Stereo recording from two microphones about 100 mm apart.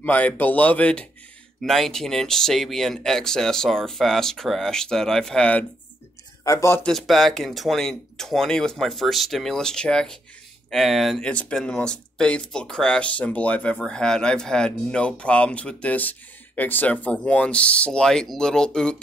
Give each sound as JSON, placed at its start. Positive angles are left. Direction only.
{"t": 0.0, "sound": "speech", "side_deg": 15}
{"t": 1.6, "sound": "speech", "side_deg": 5}
{"t": 6.4, "sound": "a man's voice", "side_deg": 30}
{"t": 6.8, "sound": "speech", "side_deg": 5}